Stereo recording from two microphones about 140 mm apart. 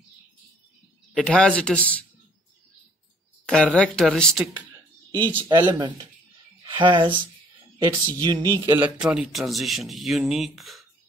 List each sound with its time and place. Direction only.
1.1 s a man's voice: 5° left (ahead or behind)
3.4 s a man's voice: 5° left (ahead or behind)
5.1 s speech: 35° right (ahead or behind)
8.7 s a man's voice: 10° right (ahead or behind)